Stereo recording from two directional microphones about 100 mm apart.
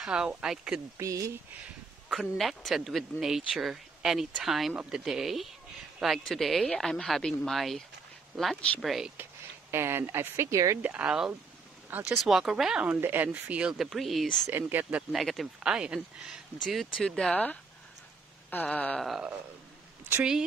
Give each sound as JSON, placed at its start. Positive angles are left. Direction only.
{"t": 0.0, "sound": "speech", "side_deg": -10}
{"t": 0.9, "sound": "speech", "side_deg": -35}
{"t": 2.0, "sound": "speech", "side_deg": 0}
{"t": 8.5, "sound": "a sound", "side_deg": 10}
{"t": 8.8, "sound": "speech", "side_deg": 0}
{"t": 9.1, "sound": "speech", "side_deg": -25}
{"t": 10.8, "sound": "speech", "side_deg": -15}
{"t": 12.2, "sound": "speech", "side_deg": -5}
{"t": 14.4, "sound": "speech", "side_deg": -20}
{"t": 15.1, "sound": "speech", "side_deg": 0}
{"t": 16.6, "sound": "speech", "side_deg": 5}
{"t": 18.5, "sound": "a sound", "side_deg": 15}